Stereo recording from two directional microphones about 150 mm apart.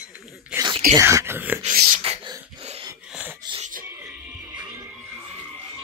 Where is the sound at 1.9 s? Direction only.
50° right (ahead or behind).